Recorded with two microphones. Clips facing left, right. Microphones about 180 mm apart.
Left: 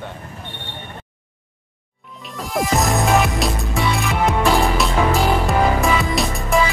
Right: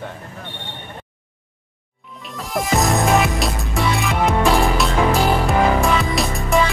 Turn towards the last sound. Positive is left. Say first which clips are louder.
# even
turn(degrees=0)  # may be behind; listen again after turning